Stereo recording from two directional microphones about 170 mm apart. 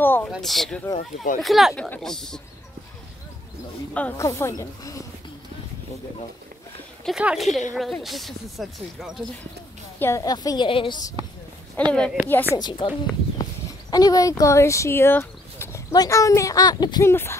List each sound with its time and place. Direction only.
0.0 s a sound: 10° left (ahead or behind)
0.3 s speech: centre (ahead or behind)
0.9 s speech: 50° left (ahead or behind)
1.4 s speech: centre (ahead or behind)
3.9 s a woman's voice: 10° left (ahead or behind)
7.1 s speech: 5° right (ahead or behind)
9.9 s a woman's voice: 15° left (ahead or behind)
11.9 s speech: 5° left (ahead or behind)
12.5 s a woman's voice: 25° left (ahead or behind)
13.4 s a sound: 20° left (ahead or behind)
14.4 s speech: 15° left (ahead or behind)
17.1 s speech: 15° left (ahead or behind)